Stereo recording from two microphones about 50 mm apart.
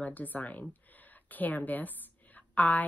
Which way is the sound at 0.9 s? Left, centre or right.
Left.